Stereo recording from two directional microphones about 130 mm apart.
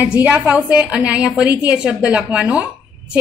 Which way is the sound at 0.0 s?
10° right (ahead or behind).